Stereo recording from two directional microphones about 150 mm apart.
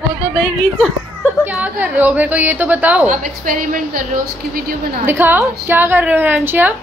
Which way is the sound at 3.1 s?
65° right (ahead or behind).